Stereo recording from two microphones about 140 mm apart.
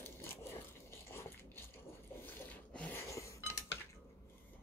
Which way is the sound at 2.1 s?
15° left (ahead or behind).